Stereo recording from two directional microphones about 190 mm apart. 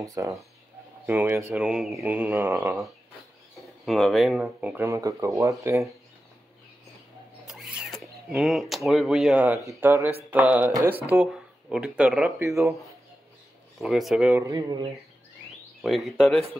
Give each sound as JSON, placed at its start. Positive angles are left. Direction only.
{"t": 0.0, "sound": "speech", "side_deg": -15}
{"t": 7.4, "sound": "a sound", "side_deg": -5}
{"t": 8.3, "sound": "speech", "side_deg": 0}
{"t": 11.1, "sound": "speech", "side_deg": -5}
{"t": 13.7, "sound": "speech", "side_deg": 0}
{"t": 14.4, "sound": "speech", "side_deg": -20}
{"t": 15.8, "sound": "speech", "side_deg": 0}